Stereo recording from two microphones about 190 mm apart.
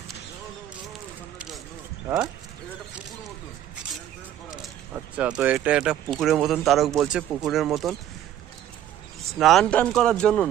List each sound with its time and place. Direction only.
5.1 s speech: 5° right (ahead or behind)
9.3 s speech: centre (ahead or behind)